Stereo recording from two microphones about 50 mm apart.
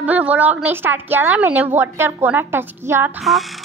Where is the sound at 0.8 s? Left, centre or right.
Right.